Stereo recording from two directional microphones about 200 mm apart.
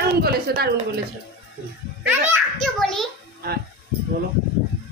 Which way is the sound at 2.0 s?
Centre (ahead or behind).